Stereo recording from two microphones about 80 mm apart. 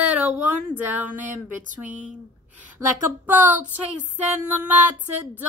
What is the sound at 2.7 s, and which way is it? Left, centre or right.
Speech, right.